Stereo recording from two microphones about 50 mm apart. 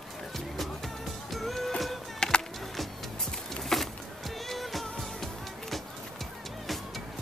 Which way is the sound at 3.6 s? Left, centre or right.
Centre.